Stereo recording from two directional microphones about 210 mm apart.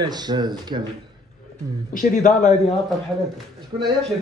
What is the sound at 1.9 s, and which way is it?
Speech, 40° left (ahead or behind).